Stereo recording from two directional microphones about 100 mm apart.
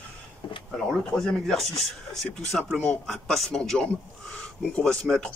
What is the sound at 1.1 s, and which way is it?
Speech, 5° left (ahead or behind).